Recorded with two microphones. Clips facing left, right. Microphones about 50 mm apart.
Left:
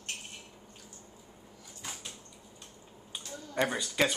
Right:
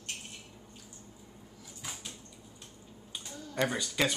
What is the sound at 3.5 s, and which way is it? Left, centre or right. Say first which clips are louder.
Speech: left 1 dB; centre.